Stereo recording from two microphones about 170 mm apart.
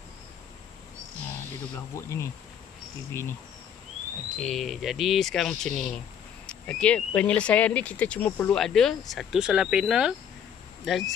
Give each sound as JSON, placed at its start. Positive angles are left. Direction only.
{"t": 2.0, "sound": "speech", "side_deg": 15}
{"t": 4.4, "sound": "speech", "side_deg": 0}